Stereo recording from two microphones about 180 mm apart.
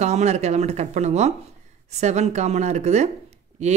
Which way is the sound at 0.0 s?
40° right (ahead or behind).